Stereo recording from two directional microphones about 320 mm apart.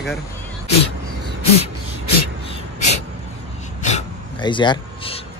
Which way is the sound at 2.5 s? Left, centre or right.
Left.